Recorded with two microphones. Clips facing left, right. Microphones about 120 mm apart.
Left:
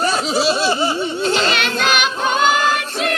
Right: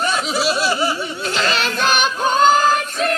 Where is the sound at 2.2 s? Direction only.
35° right (ahead or behind).